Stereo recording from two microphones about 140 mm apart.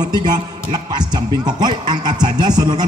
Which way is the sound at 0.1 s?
30° right (ahead or behind).